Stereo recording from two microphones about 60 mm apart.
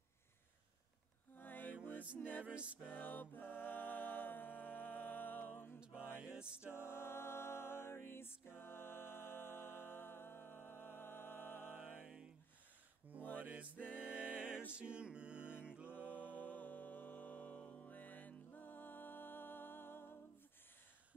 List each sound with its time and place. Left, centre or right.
1.3 s mantra: left
2.1 s music: left
2.4 s music: right
2.9 s music: left
6.1 s music: centre
6.7 s music: left
13.4 s music: right
15.9 s music: left